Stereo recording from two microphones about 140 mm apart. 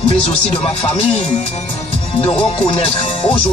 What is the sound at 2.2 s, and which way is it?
Music, 40° left (ahead or behind).